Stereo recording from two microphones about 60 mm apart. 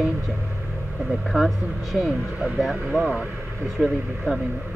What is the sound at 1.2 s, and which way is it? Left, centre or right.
Speech, centre.